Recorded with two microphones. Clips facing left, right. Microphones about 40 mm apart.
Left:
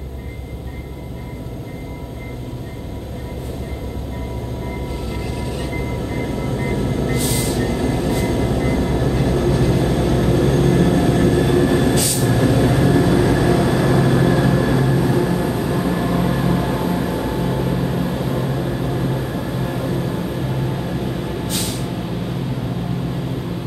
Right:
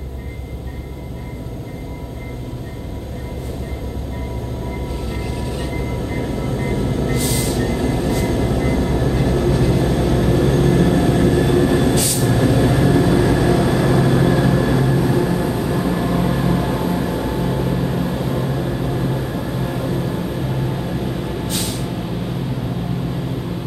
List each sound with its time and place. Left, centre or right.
6.7 s train: centre
13.5 s vehicle: centre